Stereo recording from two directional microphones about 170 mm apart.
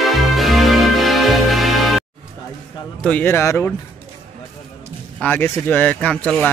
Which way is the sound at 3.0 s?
10° left (ahead or behind).